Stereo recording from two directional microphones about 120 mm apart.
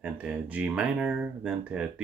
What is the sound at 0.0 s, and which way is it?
Speech, 10° right (ahead or behind).